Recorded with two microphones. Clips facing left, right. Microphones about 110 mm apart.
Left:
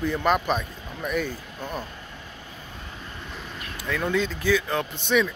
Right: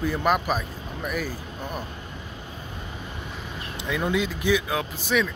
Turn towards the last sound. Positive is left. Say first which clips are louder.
# left 2 dB
turn(degrees=-5)  # may be behind; listen again after turning